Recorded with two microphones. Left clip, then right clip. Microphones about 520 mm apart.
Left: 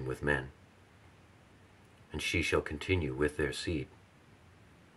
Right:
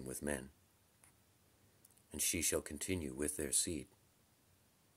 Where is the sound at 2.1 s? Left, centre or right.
Right.